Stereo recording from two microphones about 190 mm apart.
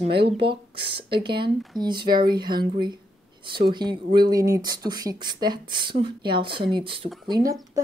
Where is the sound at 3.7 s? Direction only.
25° right (ahead or behind).